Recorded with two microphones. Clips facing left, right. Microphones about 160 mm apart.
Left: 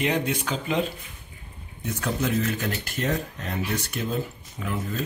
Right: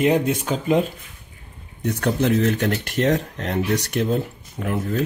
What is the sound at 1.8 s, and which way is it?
Speech, 65° right (ahead or behind).